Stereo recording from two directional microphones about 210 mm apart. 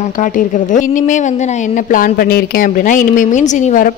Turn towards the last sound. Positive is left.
turn(degrees=35)  # may be behind; listen again after turning